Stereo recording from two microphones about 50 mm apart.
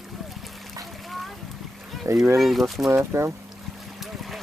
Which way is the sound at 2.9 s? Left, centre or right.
Right.